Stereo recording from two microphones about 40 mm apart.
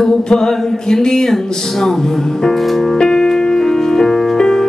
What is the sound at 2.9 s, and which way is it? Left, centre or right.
Music, centre.